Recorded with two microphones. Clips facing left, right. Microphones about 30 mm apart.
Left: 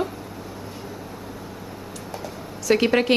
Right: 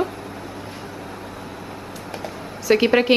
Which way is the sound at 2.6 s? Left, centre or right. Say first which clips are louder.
Right 3 dB; centre.